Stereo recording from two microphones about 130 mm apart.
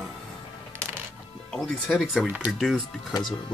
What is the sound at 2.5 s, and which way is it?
Speech, 5° left (ahead or behind).